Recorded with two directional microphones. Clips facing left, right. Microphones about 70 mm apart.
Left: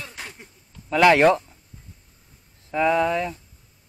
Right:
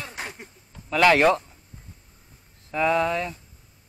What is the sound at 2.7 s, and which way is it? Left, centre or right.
Speech, centre.